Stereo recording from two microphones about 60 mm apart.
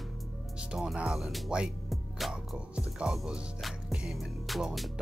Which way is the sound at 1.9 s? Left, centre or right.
Centre.